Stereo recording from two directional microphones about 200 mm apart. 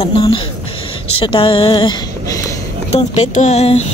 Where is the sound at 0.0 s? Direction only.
25° left (ahead or behind).